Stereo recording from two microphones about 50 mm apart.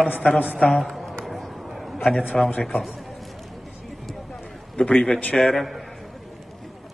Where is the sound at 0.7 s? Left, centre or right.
Centre.